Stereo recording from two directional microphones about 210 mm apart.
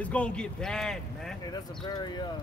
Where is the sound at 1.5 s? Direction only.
20° left (ahead or behind).